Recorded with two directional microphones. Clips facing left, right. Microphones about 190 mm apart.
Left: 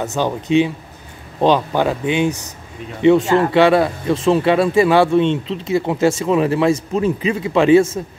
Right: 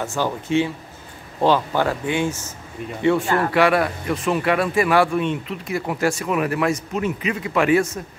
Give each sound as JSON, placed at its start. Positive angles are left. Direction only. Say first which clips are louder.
{"t": 0.0, "sound": "speech", "louder": "left 4 dB", "side_deg": 20}